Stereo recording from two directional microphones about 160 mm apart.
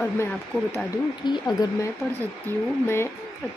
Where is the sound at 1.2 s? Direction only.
25° left (ahead or behind).